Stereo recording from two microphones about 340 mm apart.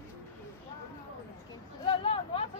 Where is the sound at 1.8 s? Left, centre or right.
Centre.